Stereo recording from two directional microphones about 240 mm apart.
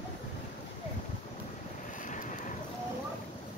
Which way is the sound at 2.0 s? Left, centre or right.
Left.